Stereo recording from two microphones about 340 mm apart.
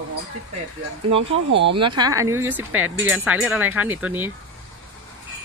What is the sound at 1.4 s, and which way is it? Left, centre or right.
Speech, right.